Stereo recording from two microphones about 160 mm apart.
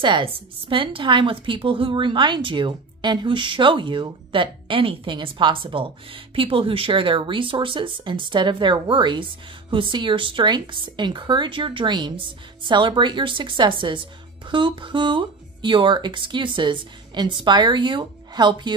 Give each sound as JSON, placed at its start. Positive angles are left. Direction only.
{"t": 0.0, "sound": "speech", "side_deg": -30}